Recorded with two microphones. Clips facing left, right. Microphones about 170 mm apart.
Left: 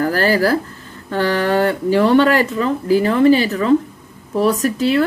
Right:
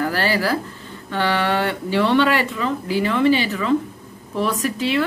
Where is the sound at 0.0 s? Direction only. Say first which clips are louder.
Left 5 dB; 45° left (ahead or behind).